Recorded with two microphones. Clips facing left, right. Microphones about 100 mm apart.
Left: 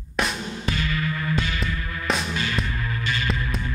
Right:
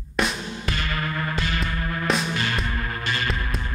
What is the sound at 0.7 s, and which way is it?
Music, 55° right (ahead or behind).